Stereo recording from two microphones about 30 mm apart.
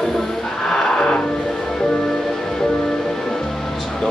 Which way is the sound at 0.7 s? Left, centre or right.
Left.